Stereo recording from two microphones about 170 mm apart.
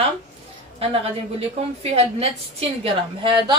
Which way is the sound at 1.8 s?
35° right (ahead or behind).